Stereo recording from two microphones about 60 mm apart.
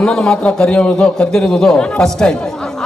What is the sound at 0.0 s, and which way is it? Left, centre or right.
A man's voice, centre.